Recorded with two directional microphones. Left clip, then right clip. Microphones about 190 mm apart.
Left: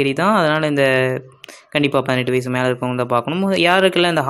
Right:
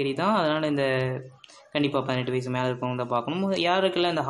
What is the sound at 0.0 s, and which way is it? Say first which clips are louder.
Speech: left 8 dB; 35° left (ahead or behind).